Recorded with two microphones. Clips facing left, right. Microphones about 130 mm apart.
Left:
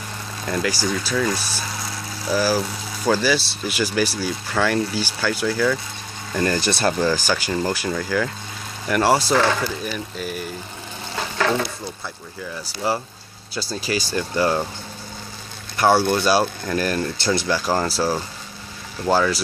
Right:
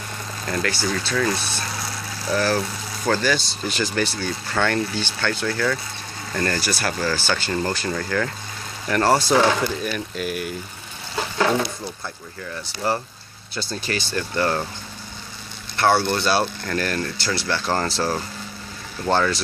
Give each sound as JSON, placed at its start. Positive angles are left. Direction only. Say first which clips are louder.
{"t": 0.5, "sound": "speech", "louder": "left 2 dB", "side_deg": 10}
{"t": 9.3, "sound": "speech", "louder": "right 1 dB", "side_deg": -10}
{"t": 11.3, "sound": "a sound", "louder": "right 1 dB", "side_deg": -15}
{"t": 13.8, "sound": "speech", "louder": "left 3 dB", "side_deg": 10}
{"t": 15.7, "sound": "speech", "louder": "left 2 dB", "side_deg": 10}
{"t": 17.6, "sound": "speech", "louder": "left 2 dB", "side_deg": 10}